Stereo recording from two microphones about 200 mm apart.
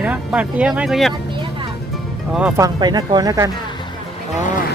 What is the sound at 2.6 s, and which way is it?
Speech, 20° right (ahead or behind).